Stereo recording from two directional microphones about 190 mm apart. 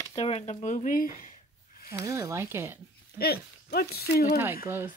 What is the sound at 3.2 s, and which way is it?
Speech, 55° left (ahead or behind).